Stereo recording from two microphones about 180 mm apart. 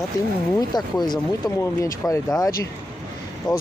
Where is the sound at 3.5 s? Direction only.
25° left (ahead or behind).